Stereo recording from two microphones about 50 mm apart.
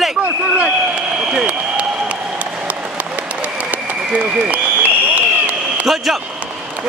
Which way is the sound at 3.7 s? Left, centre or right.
Right.